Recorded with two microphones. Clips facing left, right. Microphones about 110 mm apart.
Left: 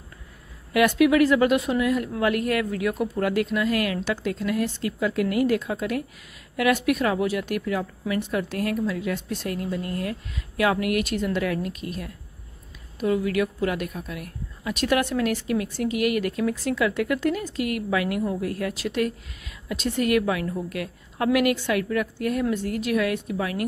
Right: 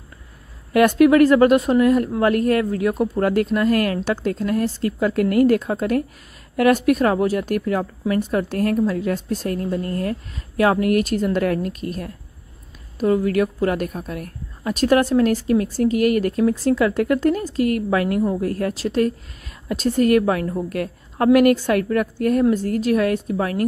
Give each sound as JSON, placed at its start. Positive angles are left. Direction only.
{"t": 0.7, "sound": "a woman's voice", "side_deg": -45}